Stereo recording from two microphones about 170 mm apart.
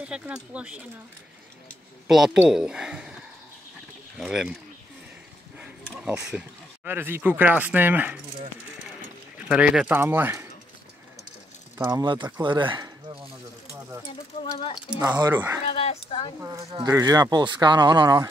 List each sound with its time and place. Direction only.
0.1 s speech: 5° right (ahead or behind)
2.0 s speech: centre (ahead or behind)
5.6 s speech: 5° right (ahead or behind)
9.5 s speech: 5° right (ahead or behind)
11.8 s speech: 25° right (ahead or behind)
15.1 s speech: 15° right (ahead or behind)
15.7 s speech: 35° left (ahead or behind)
16.3 s speech: 20° right (ahead or behind)